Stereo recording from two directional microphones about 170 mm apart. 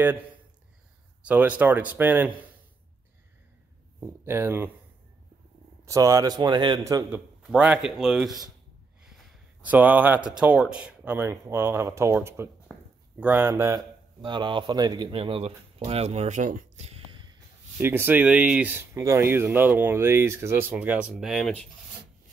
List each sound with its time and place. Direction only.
1.2 s speech: 10° right (ahead or behind)
4.0 s speech: 15° right (ahead or behind)
5.9 s speech: 20° right (ahead or behind)
7.5 s speech: 5° right (ahead or behind)
9.6 s speech: 10° right (ahead or behind)
12.7 s a sound: 10° left (ahead or behind)
13.2 s speech: 10° right (ahead or behind)
14.2 s speech: 30° right (ahead or behind)
15.9 s a sound: 40° right (ahead or behind)
17.8 s speech: 10° right (ahead or behind)